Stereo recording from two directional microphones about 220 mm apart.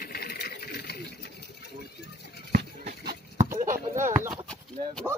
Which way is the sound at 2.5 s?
45° right (ahead or behind).